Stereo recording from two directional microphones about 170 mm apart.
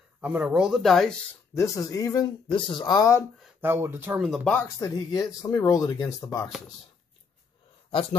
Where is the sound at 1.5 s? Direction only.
20° left (ahead or behind).